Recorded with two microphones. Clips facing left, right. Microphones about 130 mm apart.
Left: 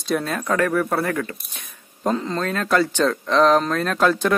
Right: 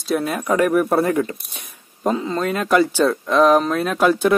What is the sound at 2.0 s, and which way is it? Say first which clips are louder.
Speech: right 2 dB; 10° right (ahead or behind).